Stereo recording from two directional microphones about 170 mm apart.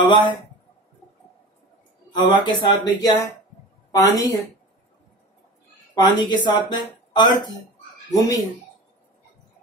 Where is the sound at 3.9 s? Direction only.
20° left (ahead or behind).